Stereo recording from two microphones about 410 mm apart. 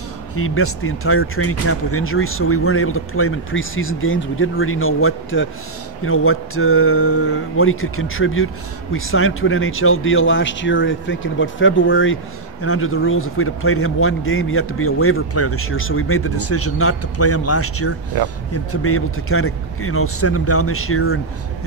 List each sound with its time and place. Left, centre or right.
0.4 s a man's voice: left
18.1 s speech: right
18.5 s a man's voice: left